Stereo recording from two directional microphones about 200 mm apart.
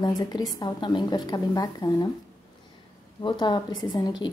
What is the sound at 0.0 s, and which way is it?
A woman's voice, 20° left (ahead or behind).